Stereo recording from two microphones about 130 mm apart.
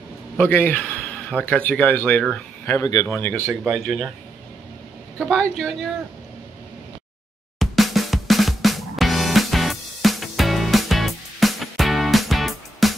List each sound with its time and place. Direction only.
0.4 s a man's voice: 15° left (ahead or behind)
2.6 s speech: 20° left (ahead or behind)
3.7 s speech: centre (ahead or behind)
5.3 s speech: 5° left (ahead or behind)
7.5 s music: centre (ahead or behind)